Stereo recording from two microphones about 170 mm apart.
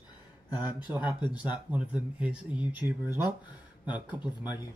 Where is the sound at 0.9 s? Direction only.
10° right (ahead or behind).